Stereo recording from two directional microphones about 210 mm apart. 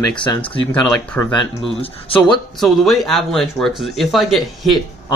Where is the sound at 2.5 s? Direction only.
Centre (ahead or behind).